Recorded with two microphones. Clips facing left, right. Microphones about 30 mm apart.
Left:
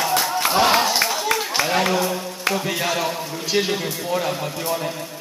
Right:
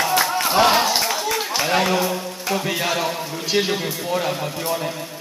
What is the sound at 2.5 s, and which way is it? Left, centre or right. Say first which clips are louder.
A man's voice: right 1 dB; centre.